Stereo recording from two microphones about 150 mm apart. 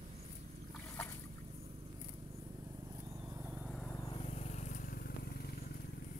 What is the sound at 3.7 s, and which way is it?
Vehicle, 5° left (ahead or behind).